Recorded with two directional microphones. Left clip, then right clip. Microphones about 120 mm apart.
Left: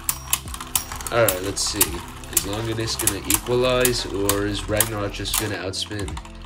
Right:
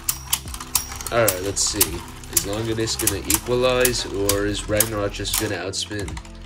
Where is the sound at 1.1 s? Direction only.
Centre (ahead or behind).